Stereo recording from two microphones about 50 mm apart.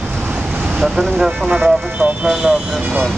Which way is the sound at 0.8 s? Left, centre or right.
Centre.